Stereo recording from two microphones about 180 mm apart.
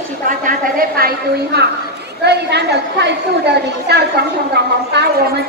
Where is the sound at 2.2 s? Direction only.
70° right (ahead or behind).